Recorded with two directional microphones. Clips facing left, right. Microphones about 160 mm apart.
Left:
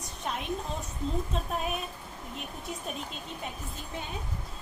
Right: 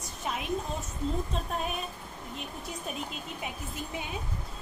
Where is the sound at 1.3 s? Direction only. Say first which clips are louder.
Left 1 dB; centre (ahead or behind).